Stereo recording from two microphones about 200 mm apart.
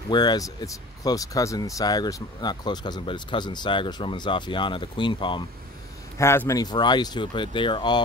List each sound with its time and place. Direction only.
0.1 s speech: 20° left (ahead or behind)
6.1 s speech: 10° left (ahead or behind)